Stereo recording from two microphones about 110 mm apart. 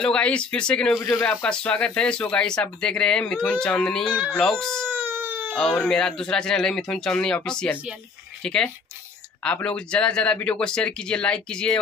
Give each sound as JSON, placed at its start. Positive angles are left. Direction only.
{"t": 0.0, "sound": "speech", "side_deg": 10}
{"t": 4.8, "sound": "baby cry", "side_deg": -20}
{"t": 5.5, "sound": "speech", "side_deg": 5}
{"t": 9.4, "sound": "speech", "side_deg": 10}